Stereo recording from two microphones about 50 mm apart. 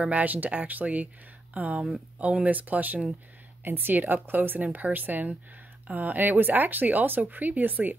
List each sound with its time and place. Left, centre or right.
0.0 s speech: right